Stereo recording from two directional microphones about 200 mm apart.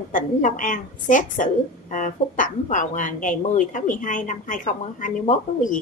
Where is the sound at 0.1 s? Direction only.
40° left (ahead or behind).